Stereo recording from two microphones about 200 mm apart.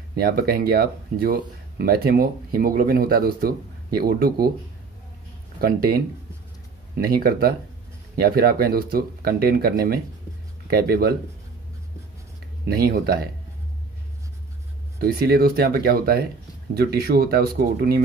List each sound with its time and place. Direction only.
0.1 s speech: 50° right (ahead or behind)
5.6 s speech: 50° right (ahead or behind)
12.6 s speech: 50° right (ahead or behind)
15.0 s speech: 50° right (ahead or behind)